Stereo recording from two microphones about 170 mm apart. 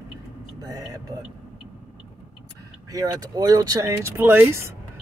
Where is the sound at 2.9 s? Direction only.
20° right (ahead or behind).